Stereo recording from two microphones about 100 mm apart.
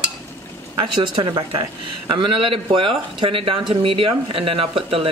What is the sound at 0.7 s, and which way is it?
Speech, 55° right (ahead or behind).